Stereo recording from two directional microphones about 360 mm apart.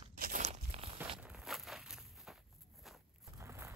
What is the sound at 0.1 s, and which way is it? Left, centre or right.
Walk, right.